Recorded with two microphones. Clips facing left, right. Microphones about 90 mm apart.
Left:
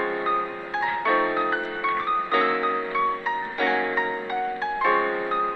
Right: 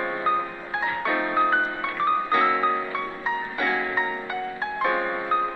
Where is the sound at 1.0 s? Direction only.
20° left (ahead or behind).